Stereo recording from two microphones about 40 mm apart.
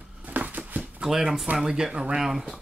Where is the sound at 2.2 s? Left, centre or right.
Centre.